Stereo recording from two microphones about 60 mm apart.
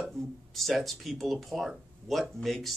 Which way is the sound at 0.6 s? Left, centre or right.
Centre.